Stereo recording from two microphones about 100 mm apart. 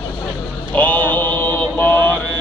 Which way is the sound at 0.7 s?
15° left (ahead or behind).